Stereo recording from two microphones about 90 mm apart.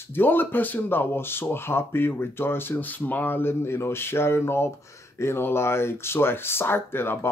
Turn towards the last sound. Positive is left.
turn(degrees=25)  # may be behind; listen again after turning